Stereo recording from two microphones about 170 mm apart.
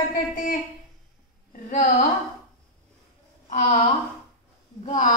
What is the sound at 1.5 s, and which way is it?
Speech, 50° left (ahead or behind).